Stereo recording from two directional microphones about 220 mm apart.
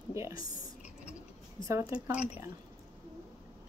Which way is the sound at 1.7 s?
15° right (ahead or behind).